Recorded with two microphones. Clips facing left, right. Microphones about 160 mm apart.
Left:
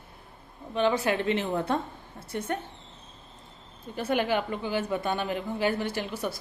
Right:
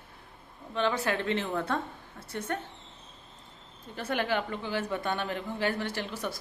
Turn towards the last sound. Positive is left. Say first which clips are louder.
# left 3 dB
turn(degrees=10)  # may be behind; listen again after turning